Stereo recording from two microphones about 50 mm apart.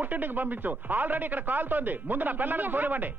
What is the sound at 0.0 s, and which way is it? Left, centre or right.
Speech, right.